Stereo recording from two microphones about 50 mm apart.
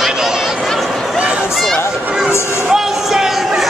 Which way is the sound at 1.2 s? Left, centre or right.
Right.